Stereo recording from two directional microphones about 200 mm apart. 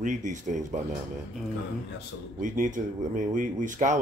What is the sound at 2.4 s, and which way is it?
Speech, 40° right (ahead or behind).